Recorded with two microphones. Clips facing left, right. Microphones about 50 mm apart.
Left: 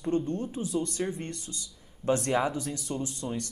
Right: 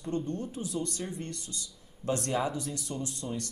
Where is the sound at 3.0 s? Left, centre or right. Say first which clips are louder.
Left 2 dB; left.